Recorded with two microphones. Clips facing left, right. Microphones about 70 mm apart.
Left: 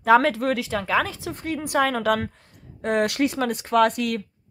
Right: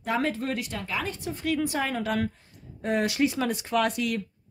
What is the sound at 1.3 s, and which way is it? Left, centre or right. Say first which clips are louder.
Speech: right 1 dB; left.